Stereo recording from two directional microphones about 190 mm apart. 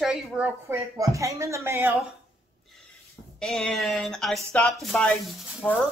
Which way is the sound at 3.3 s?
5° left (ahead or behind).